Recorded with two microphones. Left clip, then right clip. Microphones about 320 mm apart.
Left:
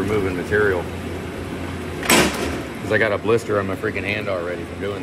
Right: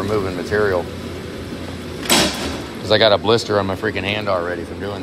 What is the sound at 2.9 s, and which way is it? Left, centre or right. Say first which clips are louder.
Speech: right 5 dB; right.